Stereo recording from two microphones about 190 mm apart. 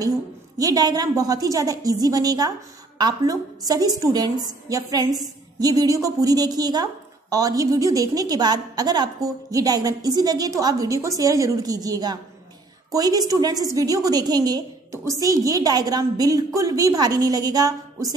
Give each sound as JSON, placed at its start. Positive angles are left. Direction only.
{"t": 0.6, "sound": "a woman's voice", "side_deg": -20}